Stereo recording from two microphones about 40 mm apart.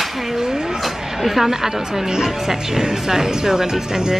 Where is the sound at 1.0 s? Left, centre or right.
Centre.